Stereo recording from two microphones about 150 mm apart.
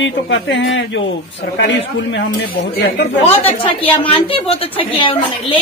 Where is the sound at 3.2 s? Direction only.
40° left (ahead or behind).